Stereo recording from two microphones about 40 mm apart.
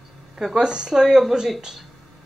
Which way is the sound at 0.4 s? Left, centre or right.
Centre.